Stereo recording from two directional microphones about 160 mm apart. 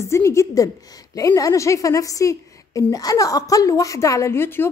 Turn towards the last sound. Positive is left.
turn(degrees=15)  # may be behind; listen again after turning